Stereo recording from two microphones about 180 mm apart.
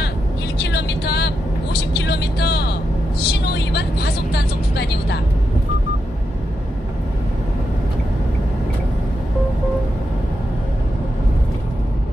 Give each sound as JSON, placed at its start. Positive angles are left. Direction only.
{"t": 0.6, "sound": "vehicle", "side_deg": 65}